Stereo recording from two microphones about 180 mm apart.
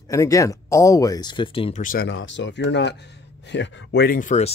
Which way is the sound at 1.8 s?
55° left (ahead or behind).